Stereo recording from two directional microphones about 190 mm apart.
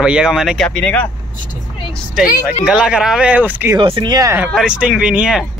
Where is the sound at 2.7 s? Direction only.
5° right (ahead or behind).